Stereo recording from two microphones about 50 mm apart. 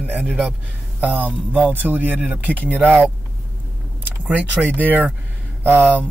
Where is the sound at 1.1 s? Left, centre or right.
Right.